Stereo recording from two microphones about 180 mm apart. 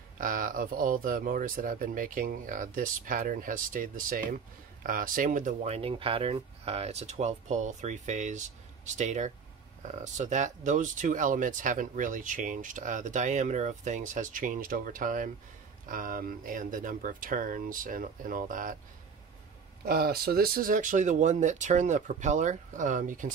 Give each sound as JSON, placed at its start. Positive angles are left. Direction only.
{"t": 0.2, "sound": "speech", "side_deg": -50}
{"t": 19.8, "sound": "speech", "side_deg": -55}